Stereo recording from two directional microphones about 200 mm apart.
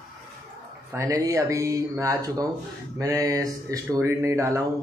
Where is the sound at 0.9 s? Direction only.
15° right (ahead or behind).